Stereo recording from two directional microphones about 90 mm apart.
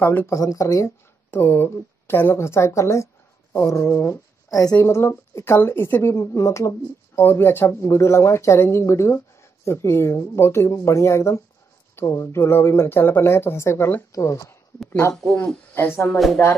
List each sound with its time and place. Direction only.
0.0 s speech: 20° left (ahead or behind)
0.3 s a woman's voice: 40° left (ahead or behind)
1.3 s speech: 25° left (ahead or behind); by 4.7 s 40° left (ahead or behind)
4.7 s a woman's voice: 30° left (ahead or behind)
14.9 s speech: 20° left (ahead or behind)